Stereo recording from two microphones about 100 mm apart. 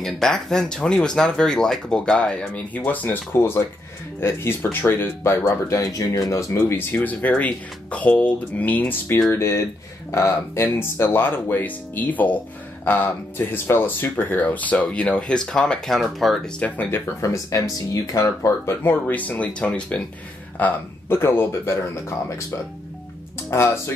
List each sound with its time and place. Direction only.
0.0 s speech: 5° left (ahead or behind); by 5.8 s 25° left (ahead or behind)
5.8 s speech: 35° left (ahead or behind); by 16.3 s centre (ahead or behind)
16.5 s speech: 15° left (ahead or behind)
17.2 s speech: 30° left (ahead or behind)
18.8 s speech: 20° left (ahead or behind)
23.5 s speech: 25° left (ahead or behind)